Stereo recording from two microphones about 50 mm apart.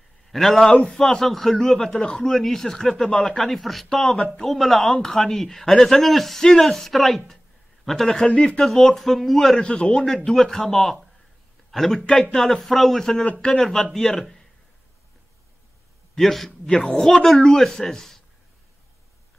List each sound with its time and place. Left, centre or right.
0.3 s speech: centre
8.3 s a man's voice: left
8.5 s speech: centre
9.6 s a man's voice: centre
10.0 s speech: centre
13.2 s a man's voice: left
13.5 s speech: centre
16.2 s speech: centre